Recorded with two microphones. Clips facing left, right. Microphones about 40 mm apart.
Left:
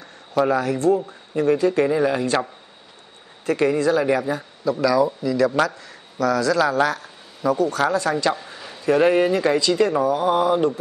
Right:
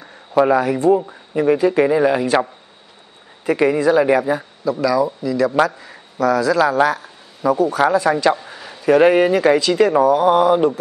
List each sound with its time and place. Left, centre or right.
0.0 s speech: centre
3.4 s speech: centre
8.4 s a sound: centre
8.8 s speech: centre